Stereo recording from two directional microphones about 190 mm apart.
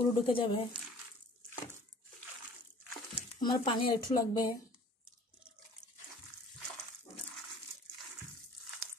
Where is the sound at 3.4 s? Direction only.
25° left (ahead or behind).